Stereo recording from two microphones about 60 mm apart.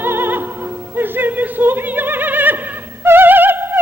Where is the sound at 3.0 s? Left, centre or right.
Right.